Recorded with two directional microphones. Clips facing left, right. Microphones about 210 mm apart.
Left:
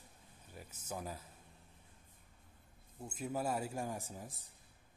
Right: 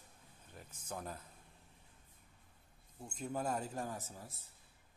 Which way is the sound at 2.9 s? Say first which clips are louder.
Left 1 dB; 5° left (ahead or behind).